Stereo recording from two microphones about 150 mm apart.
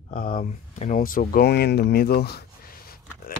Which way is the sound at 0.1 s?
70° left (ahead or behind).